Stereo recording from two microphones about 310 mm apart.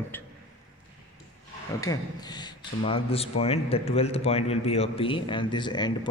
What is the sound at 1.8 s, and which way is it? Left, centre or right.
A man's voice, centre.